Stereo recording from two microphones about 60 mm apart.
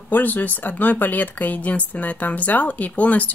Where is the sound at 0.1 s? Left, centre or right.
Left.